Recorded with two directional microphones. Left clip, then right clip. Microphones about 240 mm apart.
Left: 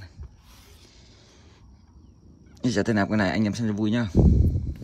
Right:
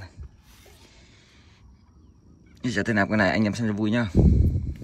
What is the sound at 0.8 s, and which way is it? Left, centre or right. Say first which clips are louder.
Music: even; centre.